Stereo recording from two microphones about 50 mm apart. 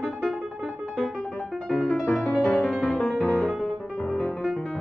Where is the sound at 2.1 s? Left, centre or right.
Centre.